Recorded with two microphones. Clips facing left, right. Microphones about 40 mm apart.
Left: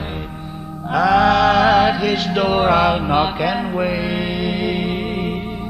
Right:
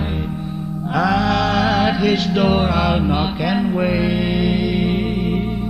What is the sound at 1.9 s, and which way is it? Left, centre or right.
Music, centre.